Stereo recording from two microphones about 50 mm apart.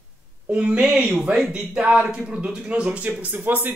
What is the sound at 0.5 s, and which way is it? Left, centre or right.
Speech, right.